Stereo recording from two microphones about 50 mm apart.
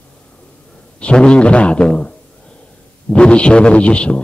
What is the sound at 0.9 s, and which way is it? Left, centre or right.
A man's voice, left.